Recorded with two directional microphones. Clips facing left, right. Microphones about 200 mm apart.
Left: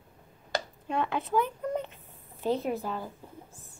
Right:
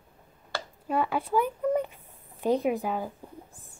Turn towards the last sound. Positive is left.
turn(degrees=-15)  # may be behind; listen again after turning